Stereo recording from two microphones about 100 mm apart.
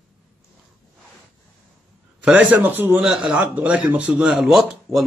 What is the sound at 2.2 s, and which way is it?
Speech, 10° right (ahead or behind).